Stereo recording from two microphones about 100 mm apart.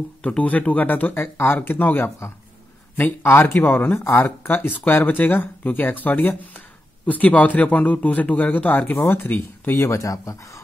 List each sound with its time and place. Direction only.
0.2 s a man's voice: 15° left (ahead or behind); by 10.6 s 35° left (ahead or behind)